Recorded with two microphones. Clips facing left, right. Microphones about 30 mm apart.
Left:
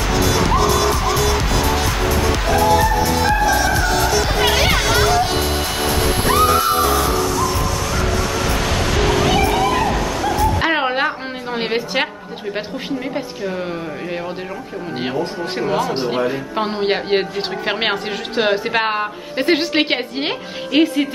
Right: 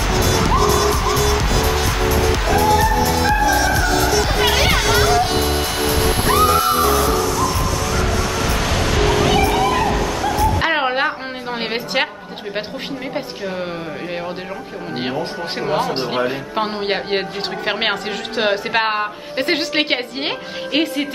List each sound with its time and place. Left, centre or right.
0.0 s music: centre
7.1 s a sound: centre
10.5 s music: centre
15.0 s speech: centre
16.5 s a woman's voice: centre